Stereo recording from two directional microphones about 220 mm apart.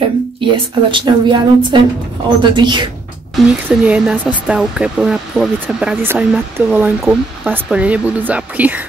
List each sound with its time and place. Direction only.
0.5 s a woman's voice: 20° right (ahead or behind)
3.3 s speech: 5° right (ahead or behind)